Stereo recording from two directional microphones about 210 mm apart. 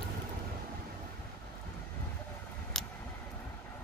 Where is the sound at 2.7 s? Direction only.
Centre (ahead or behind).